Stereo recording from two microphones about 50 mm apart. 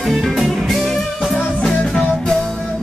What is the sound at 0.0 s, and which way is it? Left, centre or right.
Music, centre.